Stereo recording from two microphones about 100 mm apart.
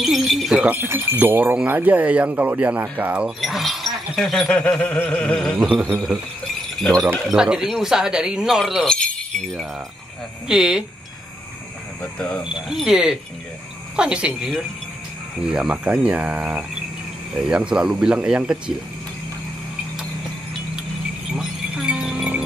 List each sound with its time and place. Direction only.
0.0 s speech: centre (ahead or behind)
0.7 s speech: 20° right (ahead or behind)
3.3 s goat: centre (ahead or behind)
5.8 s a man's voice: 20° right (ahead or behind)
6.8 s speech: 5° left (ahead or behind)
7.2 s speech: 5° right (ahead or behind)
8.8 s speech: 10° left (ahead or behind)
10.5 s speech: 5° right (ahead or behind)
12.0 s goat: 15° left (ahead or behind)
12.4 s speech: 5° right (ahead or behind)
15.5 s speech: 10° right (ahead or behind)
21.4 s speech: 5° right (ahead or behind)